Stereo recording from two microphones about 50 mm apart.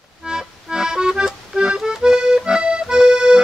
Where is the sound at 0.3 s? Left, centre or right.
Centre.